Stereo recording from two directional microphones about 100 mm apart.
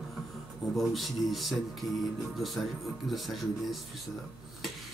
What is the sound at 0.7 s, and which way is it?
Mantra, centre (ahead or behind).